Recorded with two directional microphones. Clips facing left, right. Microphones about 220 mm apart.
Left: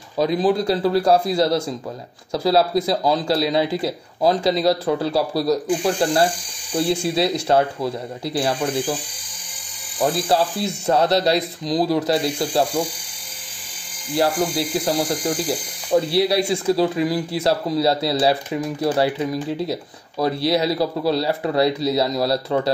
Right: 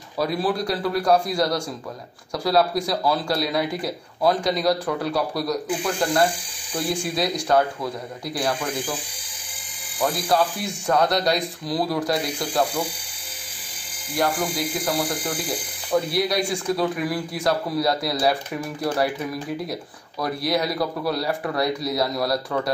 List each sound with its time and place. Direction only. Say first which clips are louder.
0.2 s speech: left 5 dB; 20° left (ahead or behind)
9.9 s speech: left 3 dB; 30° left (ahead or behind)
14.1 s speech: left 4 dB; 30° left (ahead or behind)